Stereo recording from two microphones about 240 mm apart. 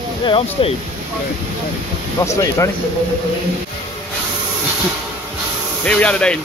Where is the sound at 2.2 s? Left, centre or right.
Centre.